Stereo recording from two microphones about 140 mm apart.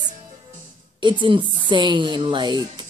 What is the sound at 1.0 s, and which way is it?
Speech, 35° right (ahead or behind).